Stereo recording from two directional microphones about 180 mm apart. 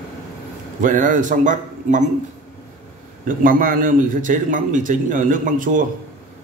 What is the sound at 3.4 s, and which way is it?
A man's voice, 50° right (ahead or behind).